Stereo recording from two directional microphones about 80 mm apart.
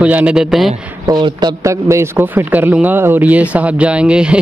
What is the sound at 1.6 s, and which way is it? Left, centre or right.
A man's voice, right.